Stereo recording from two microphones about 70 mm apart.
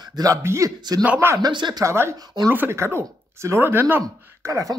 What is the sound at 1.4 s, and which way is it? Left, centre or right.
Speech, right.